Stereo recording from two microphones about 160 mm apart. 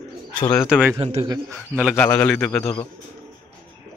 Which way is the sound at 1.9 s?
15° left (ahead or behind).